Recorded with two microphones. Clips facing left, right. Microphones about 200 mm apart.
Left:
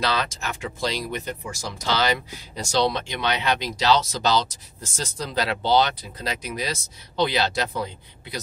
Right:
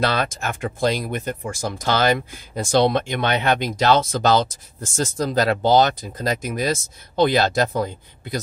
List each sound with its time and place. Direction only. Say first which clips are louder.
0.0 s speech: right 4 dB; 55° right (ahead or behind)